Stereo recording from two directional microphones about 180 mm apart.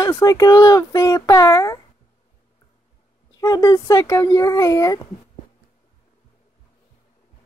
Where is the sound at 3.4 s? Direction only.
20° left (ahead or behind).